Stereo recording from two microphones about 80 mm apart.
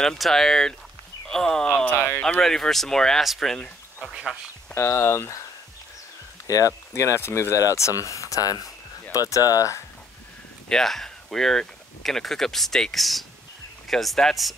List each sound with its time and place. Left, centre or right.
0.0 s speech: centre
2.0 s speech: left
2.2 s speech: centre
4.1 s speech: centre
4.7 s speech: left
6.4 s speech: left
10.7 s speech: centre